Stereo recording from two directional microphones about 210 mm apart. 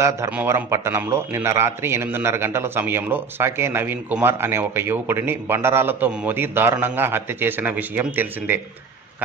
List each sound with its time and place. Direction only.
0.0 s a man's voice: 10° right (ahead or behind)